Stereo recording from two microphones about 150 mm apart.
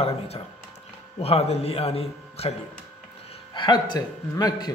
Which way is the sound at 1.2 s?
45° left (ahead or behind).